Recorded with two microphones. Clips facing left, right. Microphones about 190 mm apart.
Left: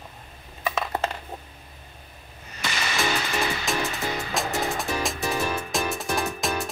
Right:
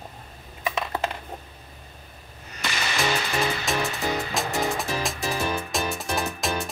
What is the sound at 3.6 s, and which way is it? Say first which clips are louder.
Music: right 1 dB; centre (ahead or behind).